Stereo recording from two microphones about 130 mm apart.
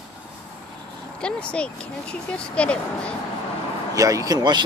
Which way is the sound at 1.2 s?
10° left (ahead or behind).